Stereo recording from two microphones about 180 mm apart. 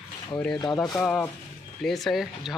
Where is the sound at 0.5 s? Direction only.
20° left (ahead or behind).